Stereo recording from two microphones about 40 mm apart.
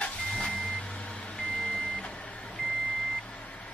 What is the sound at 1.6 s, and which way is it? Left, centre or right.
Reversing beeps, centre.